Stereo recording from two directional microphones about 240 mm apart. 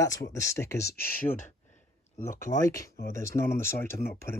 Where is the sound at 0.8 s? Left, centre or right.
Left.